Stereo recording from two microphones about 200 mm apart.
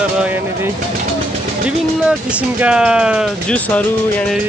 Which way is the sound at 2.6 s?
5° right (ahead or behind).